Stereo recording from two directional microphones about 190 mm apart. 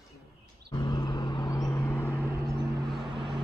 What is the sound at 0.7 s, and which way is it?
Vehicle, 20° left (ahead or behind).